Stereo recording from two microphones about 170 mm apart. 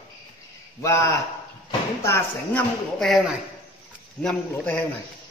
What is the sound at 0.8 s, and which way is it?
Speech, 15° left (ahead or behind).